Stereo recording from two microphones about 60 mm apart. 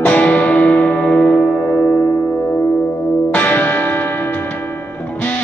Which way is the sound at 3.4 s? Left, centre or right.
Left.